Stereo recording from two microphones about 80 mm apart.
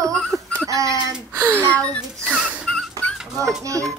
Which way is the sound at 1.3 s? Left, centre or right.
Right.